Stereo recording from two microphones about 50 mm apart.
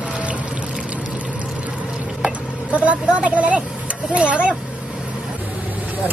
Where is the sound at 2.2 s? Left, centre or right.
Right.